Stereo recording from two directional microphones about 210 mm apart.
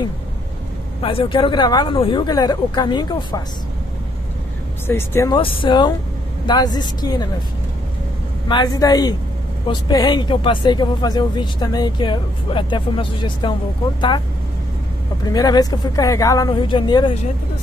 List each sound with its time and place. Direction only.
1.0 s speech: 25° left (ahead or behind)
4.8 s a woman's voice: 10° left (ahead or behind)
5.3 s speech: 25° left (ahead or behind)
8.5 s speech: 20° left (ahead or behind)
15.2 s a woman's voice: 20° left (ahead or behind)